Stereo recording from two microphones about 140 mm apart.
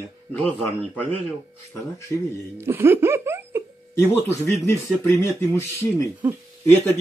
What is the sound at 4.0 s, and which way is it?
Speech, 20° left (ahead or behind).